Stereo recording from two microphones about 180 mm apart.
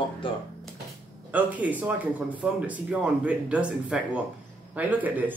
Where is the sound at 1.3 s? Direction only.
10° right (ahead or behind).